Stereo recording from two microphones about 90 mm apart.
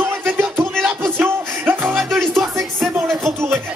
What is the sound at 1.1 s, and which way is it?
Music, 20° right (ahead or behind).